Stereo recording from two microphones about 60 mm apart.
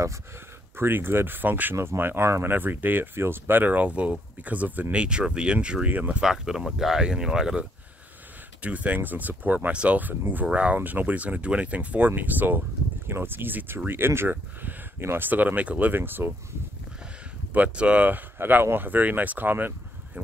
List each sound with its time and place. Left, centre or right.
0.7 s speech: right
2.5 s speech: right
4.9 s speech: centre
5.9 s speech: right
6.2 s speech: centre
8.6 s speech: right
15.9 s speech: right
17.5 s speech: right